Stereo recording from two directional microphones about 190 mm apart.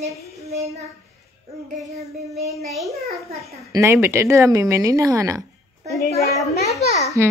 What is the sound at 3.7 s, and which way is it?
Speech, 15° right (ahead or behind).